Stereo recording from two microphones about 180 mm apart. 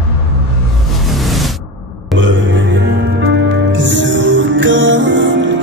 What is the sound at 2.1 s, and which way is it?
Music, 90° right.